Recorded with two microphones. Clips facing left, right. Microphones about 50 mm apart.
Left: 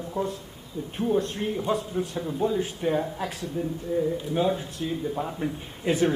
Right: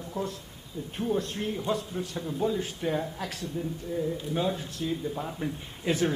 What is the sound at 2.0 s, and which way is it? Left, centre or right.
Speech, left.